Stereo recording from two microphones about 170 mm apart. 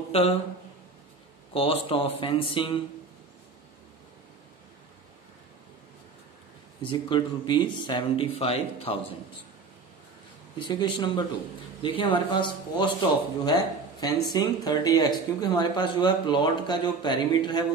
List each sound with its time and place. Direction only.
0.1 s speech: 35° left (ahead or behind)
1.5 s speech: 35° left (ahead or behind)
6.8 s speech: 30° left (ahead or behind)
10.7 s speech: 25° left (ahead or behind)